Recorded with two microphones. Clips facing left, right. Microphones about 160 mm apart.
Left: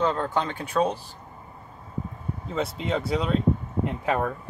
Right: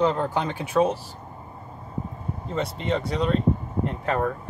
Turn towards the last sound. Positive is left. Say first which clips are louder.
# right 1 dB
turn(degrees=5)  # may be behind; listen again after turning